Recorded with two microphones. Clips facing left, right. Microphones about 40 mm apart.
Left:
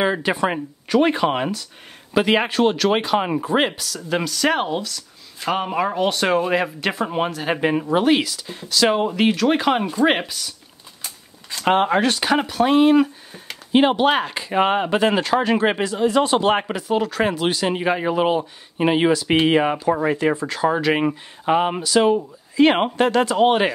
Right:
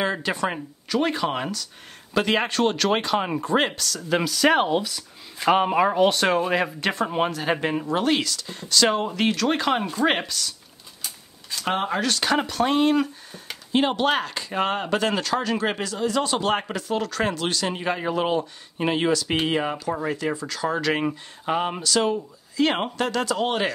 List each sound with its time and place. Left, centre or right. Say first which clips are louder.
0.0 s speech: left 5 dB; centre
11.5 s speech: left 7 dB; left
12.1 s speech: left 3 dB; centre; by 20.6 s left
20.6 s speech: left 5 dB; centre